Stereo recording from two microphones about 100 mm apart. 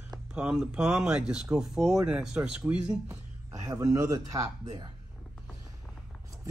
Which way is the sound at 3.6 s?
30° right (ahead or behind).